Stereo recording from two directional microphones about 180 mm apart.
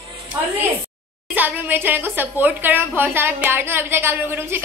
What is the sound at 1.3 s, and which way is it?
A woman's voice, 10° right (ahead or behind).